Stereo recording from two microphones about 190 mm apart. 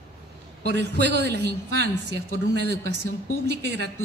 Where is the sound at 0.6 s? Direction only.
60° right (ahead or behind).